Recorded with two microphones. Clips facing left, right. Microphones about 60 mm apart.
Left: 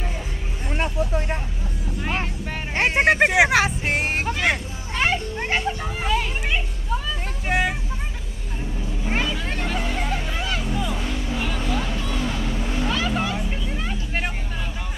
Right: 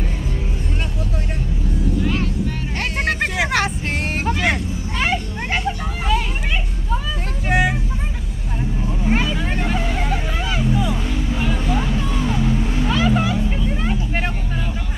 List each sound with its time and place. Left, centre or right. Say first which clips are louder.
2.8 s a sound: left 5 dB; left
3.4 s music: left 1 dB; centre
4.3 s a sound: right 3 dB; centre
7.4 s vehicle: right 4 dB; centre
9.0 s hubbub: right 5 dB; centre
11.3 s music: right 4 dB; centre